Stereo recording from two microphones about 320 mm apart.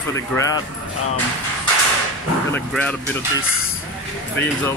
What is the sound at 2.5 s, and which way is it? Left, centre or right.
Speech, centre.